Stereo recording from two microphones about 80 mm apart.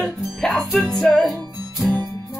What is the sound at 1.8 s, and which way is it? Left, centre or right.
Music, left.